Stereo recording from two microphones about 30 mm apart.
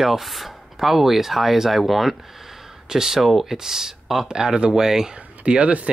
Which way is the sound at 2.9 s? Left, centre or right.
Centre.